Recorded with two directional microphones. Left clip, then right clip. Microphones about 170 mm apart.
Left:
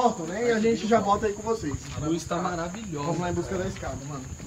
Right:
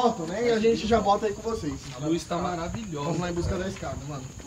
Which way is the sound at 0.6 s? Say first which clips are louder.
Even; 40° right (ahead or behind).